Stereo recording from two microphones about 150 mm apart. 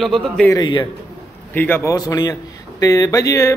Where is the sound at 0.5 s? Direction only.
30° left (ahead or behind).